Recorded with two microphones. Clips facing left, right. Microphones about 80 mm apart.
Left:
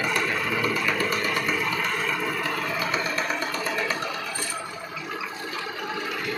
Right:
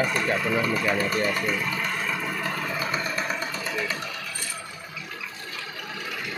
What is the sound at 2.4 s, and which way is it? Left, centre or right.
Vehicle, centre.